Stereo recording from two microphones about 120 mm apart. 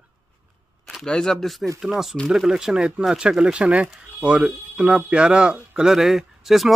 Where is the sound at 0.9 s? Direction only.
5° left (ahead or behind).